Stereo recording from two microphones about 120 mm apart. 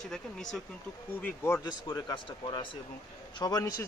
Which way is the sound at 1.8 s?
35° left (ahead or behind).